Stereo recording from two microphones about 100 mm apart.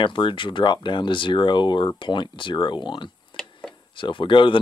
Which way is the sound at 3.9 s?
55° left (ahead or behind).